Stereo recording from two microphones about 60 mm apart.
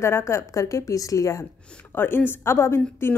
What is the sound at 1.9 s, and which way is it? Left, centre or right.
A woman's voice, left.